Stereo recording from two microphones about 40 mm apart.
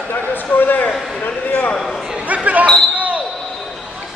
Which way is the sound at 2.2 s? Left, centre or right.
Right.